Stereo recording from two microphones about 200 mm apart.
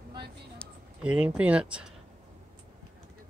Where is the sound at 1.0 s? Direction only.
5° right (ahead or behind).